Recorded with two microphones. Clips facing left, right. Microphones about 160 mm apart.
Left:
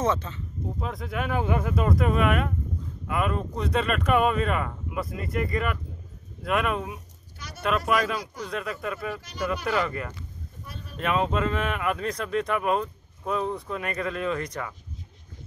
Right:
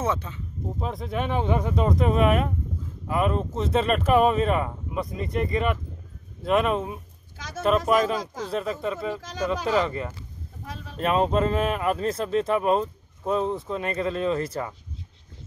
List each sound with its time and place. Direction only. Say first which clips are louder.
0.0 s speech: left 1 dB; 10° right (ahead or behind)
0.7 s speech: right 3 dB; 30° right (ahead or behind)
7.3 s a sound: right 7 dB; 90° right
7.6 s speech: right 4 dB; 40° right (ahead or behind)
9.2 s speech: right 3 dB; 90° right
10.6 s a sound: right 4 dB; 90° right
11.0 s speech: right 3 dB; 35° right (ahead or behind)